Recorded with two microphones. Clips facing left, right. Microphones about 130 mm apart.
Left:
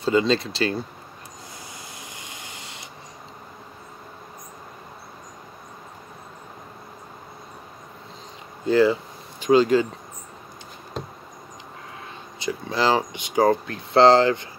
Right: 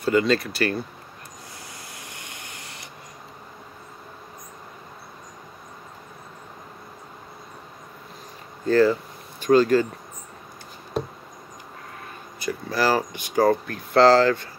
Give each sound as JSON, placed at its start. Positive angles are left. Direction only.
{"t": 0.0, "sound": "speech", "side_deg": 25}
{"t": 2.1, "sound": "vehicle", "side_deg": 20}
{"t": 8.6, "sound": "speech", "side_deg": 15}
{"t": 12.4, "sound": "speech", "side_deg": 20}